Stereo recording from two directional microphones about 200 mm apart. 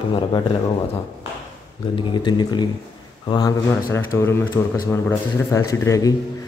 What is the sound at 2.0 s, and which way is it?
Speech, 20° left (ahead or behind).